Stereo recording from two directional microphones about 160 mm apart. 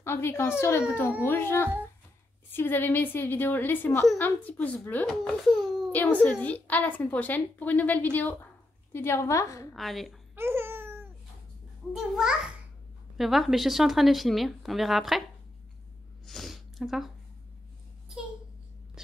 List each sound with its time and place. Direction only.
0.0 s a woman's voice: 15° left (ahead or behind)
5.0 s speech: 5° right (ahead or behind)
5.9 s a woman's voice: 10° left (ahead or behind)
9.8 s speech: centre (ahead or behind)
10.3 s babbling: 15° right (ahead or behind)
11.9 s speech: 5° right (ahead or behind)
16.3 s a sound: centre (ahead or behind)